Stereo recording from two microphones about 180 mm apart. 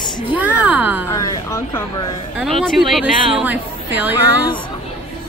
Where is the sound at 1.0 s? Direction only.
15° left (ahead or behind).